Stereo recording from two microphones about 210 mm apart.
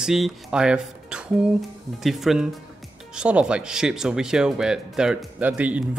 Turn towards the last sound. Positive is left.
turn(degrees=-5)  # may be behind; listen again after turning